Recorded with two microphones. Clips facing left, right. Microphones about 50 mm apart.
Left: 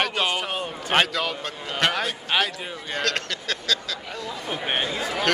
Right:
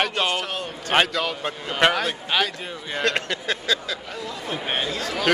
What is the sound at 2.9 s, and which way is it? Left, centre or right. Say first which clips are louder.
Speech: right 3 dB; centre.